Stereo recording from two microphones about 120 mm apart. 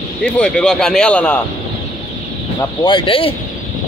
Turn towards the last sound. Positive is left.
turn(degrees=45)  # may be behind; listen again after turning